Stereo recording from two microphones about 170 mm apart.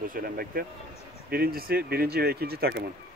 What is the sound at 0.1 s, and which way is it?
Speech, 60° right (ahead or behind).